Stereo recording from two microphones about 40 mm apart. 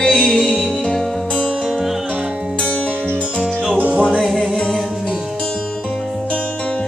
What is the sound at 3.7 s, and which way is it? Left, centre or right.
Music, right.